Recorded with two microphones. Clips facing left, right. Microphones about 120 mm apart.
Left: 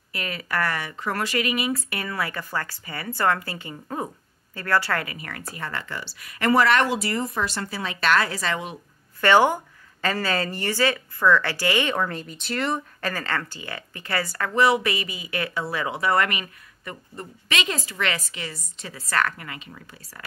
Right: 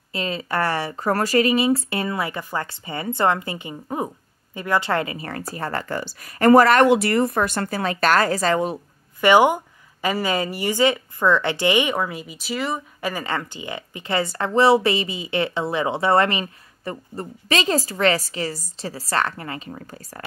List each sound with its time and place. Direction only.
0.1 s a woman's voice: 25° right (ahead or behind); by 6.9 s 45° right (ahead or behind)
6.9 s speech: 65° right (ahead or behind); by 8.7 s 40° right (ahead or behind)
9.2 s a woman's voice: 15° right (ahead or behind)
13.1 s speech: 15° right (ahead or behind); by 20.2 s 40° right (ahead or behind)